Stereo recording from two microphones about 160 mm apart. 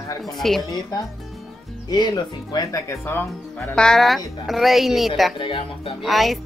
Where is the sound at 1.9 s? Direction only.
25° left (ahead or behind); by 5.3 s centre (ahead or behind).